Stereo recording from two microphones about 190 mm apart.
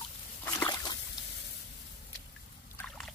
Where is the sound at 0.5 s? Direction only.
15° left (ahead or behind).